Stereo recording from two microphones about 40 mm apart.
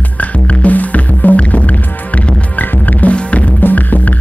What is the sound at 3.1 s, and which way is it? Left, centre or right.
Music, left.